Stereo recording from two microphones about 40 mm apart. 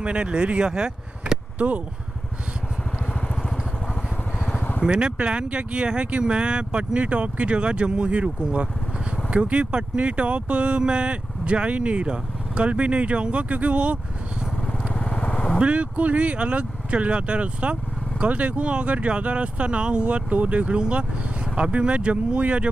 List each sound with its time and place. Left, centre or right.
0.0 s speech: right
4.8 s speech: right
15.0 s vehicle: left
15.6 s speech: right
20.2 s speech: right